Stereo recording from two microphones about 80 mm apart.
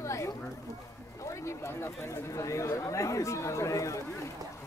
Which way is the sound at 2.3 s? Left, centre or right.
Left.